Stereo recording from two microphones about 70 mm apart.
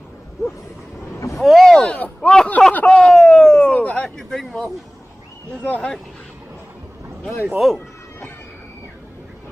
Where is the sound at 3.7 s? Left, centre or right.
Centre.